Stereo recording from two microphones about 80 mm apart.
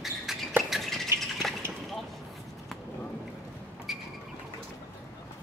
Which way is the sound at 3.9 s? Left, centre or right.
Centre.